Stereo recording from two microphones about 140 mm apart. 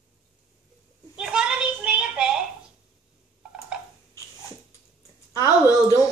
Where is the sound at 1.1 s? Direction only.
5° right (ahead or behind).